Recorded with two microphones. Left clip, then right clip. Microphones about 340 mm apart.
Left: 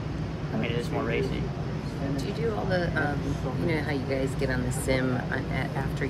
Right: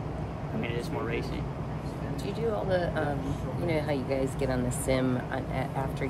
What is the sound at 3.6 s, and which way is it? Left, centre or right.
Speech, right.